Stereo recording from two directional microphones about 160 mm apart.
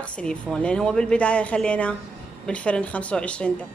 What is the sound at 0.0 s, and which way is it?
Speech, 5° left (ahead or behind).